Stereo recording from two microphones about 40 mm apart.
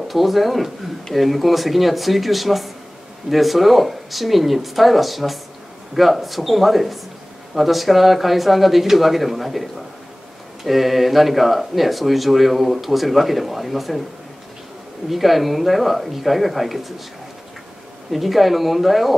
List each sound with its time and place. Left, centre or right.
0.1 s speech: centre
15.0 s speech: centre
18.1 s speech: centre